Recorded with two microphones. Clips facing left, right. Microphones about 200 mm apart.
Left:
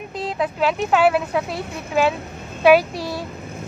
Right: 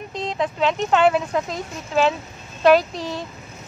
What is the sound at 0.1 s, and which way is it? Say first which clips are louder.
Speech: left 1 dB; 5° left (ahead or behind).